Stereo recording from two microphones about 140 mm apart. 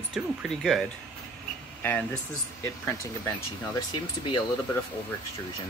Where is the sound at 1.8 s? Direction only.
10° left (ahead or behind).